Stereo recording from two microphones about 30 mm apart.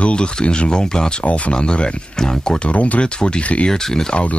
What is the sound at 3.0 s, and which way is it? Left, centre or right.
Speech, left.